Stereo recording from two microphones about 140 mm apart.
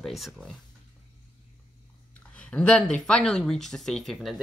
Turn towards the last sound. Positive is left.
turn(degrees=0)  # may be behind; listen again after turning